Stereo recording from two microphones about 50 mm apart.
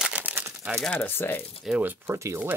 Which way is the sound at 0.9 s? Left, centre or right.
Left.